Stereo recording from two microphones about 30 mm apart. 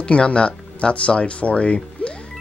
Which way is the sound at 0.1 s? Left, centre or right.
Left.